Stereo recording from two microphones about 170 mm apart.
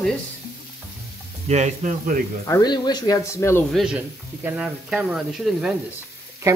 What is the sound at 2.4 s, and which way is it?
Speech, 20° left (ahead or behind).